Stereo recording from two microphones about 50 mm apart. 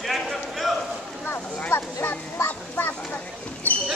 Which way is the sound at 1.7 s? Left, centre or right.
Left.